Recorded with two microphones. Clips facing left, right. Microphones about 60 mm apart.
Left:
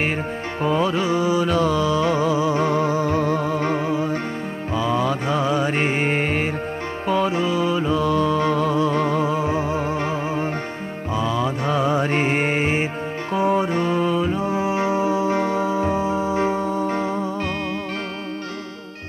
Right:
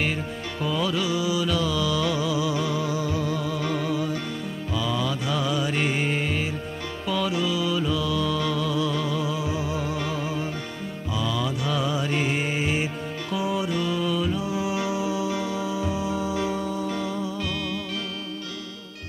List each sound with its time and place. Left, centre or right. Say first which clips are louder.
0.6 s music: left 5 dB; left
7.1 s mantra: left 5 dB; left
13.3 s music: left 7 dB; left